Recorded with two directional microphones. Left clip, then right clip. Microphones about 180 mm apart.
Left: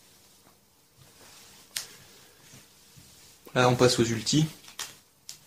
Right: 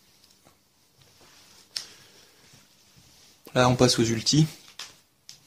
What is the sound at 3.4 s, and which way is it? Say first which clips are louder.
Speech: right 1 dB; 50° right (ahead or behind).